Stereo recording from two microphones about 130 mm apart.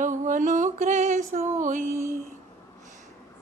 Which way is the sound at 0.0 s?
85° right.